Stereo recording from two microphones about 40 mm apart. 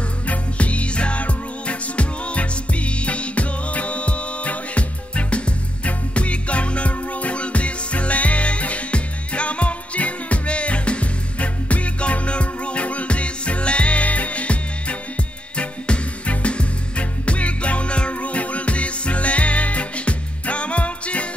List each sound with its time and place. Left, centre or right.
0.3 s music: left